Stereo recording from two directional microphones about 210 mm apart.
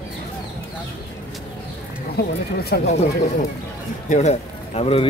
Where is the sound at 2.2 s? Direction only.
50° left (ahead or behind).